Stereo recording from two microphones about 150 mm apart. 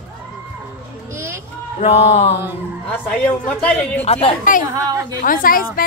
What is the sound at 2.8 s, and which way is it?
A woman's voice, 10° left (ahead or behind).